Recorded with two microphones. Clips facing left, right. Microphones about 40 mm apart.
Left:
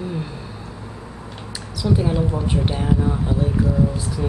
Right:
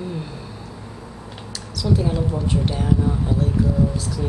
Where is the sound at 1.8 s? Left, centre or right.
Centre.